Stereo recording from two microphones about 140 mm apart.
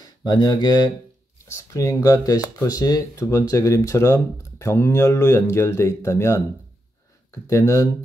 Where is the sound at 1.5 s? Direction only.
20° left (ahead or behind).